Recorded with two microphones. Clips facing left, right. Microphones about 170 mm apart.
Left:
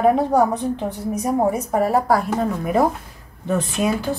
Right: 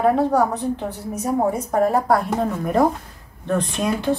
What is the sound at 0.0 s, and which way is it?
A woman's voice, 15° left (ahead or behind).